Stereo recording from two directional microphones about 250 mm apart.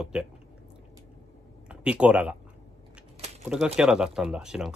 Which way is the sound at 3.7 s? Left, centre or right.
Centre.